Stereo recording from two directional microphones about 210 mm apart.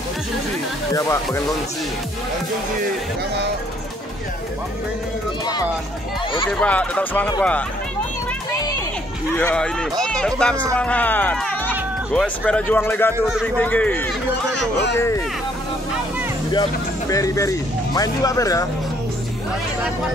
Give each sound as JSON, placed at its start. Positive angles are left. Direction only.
{"t": 0.9, "sound": "speech", "side_deg": 15}
{"t": 6.5, "sound": "speech", "side_deg": 5}
{"t": 8.5, "sound": "music", "side_deg": 15}
{"t": 9.4, "sound": "speech", "side_deg": 10}
{"t": 13.2, "sound": "speech", "side_deg": 0}
{"t": 17.1, "sound": "speech", "side_deg": 15}